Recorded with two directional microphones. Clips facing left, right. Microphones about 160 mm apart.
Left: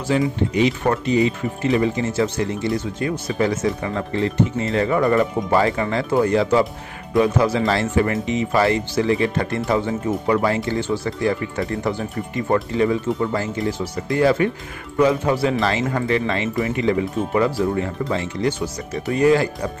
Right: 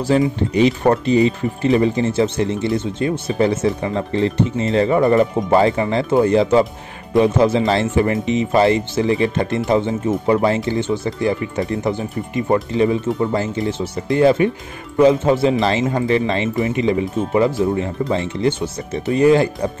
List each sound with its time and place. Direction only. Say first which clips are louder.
0.0 s speech: right 3 dB; 35° right (ahead or behind)